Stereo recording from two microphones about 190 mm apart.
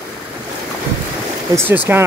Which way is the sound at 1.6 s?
10° right (ahead or behind).